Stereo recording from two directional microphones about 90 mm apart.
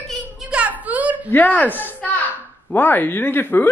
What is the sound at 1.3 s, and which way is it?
Speech, 20° left (ahead or behind).